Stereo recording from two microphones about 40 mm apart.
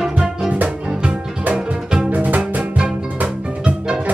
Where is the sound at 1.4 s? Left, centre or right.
Right.